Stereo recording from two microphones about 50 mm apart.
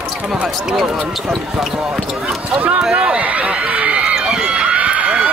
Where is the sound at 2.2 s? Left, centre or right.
Right.